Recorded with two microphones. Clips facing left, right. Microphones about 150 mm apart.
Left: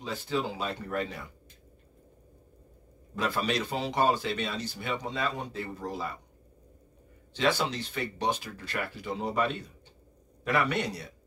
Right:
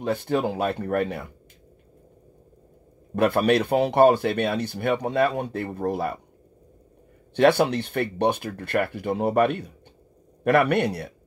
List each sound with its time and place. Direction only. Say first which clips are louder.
0.0 s speech: right 8 dB; 55° right (ahead or behind)
3.2 s speech: right 10 dB; 60° right (ahead or behind)
7.3 s speech: right 10 dB; 60° right (ahead or behind)